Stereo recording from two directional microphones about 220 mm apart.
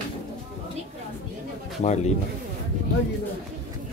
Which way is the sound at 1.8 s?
30° left (ahead or behind).